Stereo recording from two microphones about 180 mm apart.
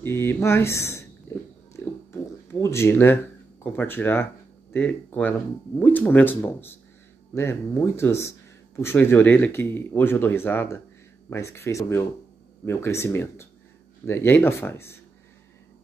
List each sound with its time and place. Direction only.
0.0 s speech: 15° left (ahead or behind)
2.4 s speech: 15° left (ahead or behind)